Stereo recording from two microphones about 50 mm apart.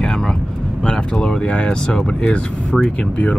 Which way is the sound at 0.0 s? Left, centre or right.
Centre.